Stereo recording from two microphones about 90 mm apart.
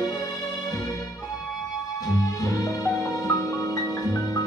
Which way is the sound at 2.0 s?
45° left (ahead or behind).